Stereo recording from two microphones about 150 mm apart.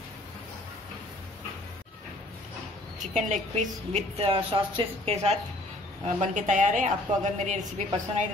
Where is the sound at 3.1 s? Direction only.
50° right (ahead or behind).